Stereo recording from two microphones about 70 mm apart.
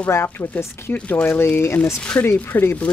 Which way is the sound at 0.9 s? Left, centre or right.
Centre.